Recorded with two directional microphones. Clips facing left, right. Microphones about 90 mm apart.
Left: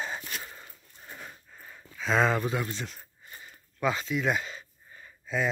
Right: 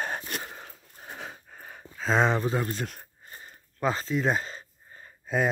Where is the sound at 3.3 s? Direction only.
35° right (ahead or behind).